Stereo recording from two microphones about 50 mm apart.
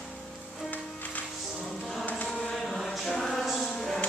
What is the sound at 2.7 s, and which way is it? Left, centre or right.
Choir, centre.